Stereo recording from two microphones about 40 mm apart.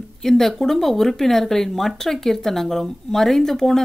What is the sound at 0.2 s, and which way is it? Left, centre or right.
Speech, centre.